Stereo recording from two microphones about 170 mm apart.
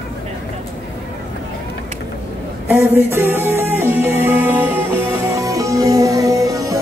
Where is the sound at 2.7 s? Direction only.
15° right (ahead or behind).